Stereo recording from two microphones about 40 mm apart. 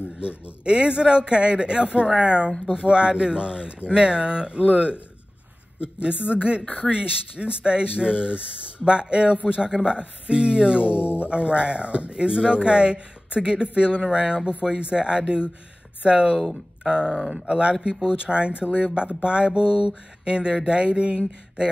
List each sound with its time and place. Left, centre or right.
0.2 s a man's voice: right
5.9 s a man's voice: right